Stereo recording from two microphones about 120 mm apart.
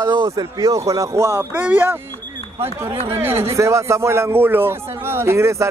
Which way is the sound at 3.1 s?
20° right (ahead or behind).